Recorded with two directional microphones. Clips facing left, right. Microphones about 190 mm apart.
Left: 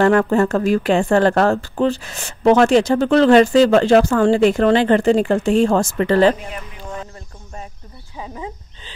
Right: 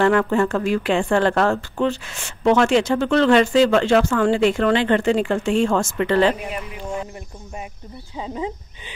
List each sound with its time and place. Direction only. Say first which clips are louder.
0.0 s speech: left 3 dB; 40° left (ahead or behind)
6.5 s a sound: right 3 dB; 10° right (ahead or behind)
8.2 s speech: right 3 dB; 20° right (ahead or behind)